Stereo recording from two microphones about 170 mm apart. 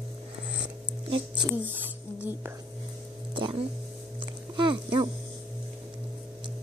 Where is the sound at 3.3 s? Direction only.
30° right (ahead or behind).